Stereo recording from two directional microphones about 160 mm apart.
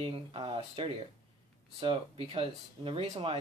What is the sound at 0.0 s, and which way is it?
Speech, 35° right (ahead or behind).